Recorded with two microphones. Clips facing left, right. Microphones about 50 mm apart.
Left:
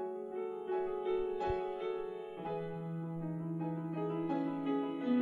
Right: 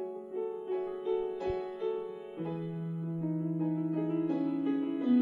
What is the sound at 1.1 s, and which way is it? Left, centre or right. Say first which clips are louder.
Music: right 4 dB; centre.